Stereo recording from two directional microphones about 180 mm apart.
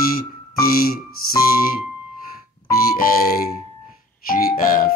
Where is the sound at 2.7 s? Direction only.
55° left (ahead or behind).